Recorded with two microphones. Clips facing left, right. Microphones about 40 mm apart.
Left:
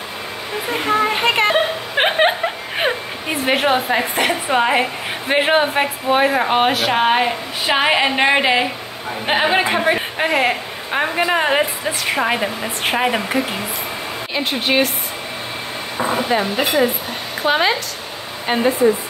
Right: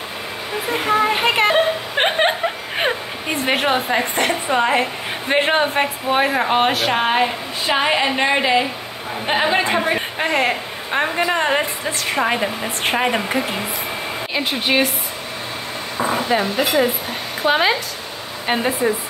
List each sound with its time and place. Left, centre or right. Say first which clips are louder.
0.6 s a woman's voice: even; centre
16.0 s a sound: even; centre
16.5 s a woman's voice: left 1 dB; centre
18.7 s a woman's voice: left 7 dB; centre